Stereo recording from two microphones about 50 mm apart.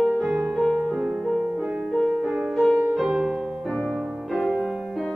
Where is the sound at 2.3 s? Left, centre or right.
Centre.